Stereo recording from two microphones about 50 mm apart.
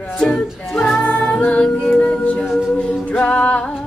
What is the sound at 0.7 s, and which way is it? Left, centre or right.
Music, centre.